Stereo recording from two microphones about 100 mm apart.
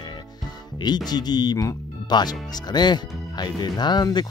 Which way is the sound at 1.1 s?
45° left (ahead or behind).